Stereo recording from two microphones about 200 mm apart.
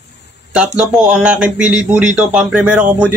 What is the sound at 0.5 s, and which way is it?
Speech, 5° right (ahead or behind).